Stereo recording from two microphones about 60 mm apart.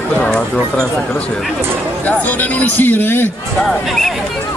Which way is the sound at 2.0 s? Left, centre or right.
Left.